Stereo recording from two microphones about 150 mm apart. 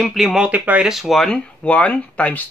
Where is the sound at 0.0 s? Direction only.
Centre (ahead or behind).